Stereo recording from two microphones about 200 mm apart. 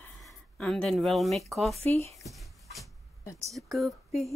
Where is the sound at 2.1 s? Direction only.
Centre (ahead or behind).